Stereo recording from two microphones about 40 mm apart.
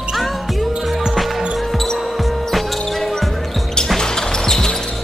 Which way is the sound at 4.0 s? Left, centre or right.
Centre.